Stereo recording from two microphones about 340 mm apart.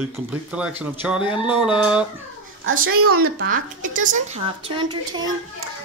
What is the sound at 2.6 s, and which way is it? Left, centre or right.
A woman's voice, right.